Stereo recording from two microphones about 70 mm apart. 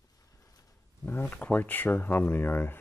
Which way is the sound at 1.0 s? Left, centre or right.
Left.